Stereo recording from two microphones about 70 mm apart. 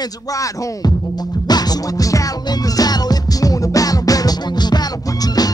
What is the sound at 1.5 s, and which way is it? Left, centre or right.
Music, left.